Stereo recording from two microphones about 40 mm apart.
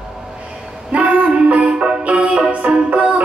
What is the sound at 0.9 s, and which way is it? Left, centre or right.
Music, right.